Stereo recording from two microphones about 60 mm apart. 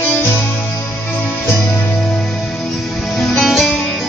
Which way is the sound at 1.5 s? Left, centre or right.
Left.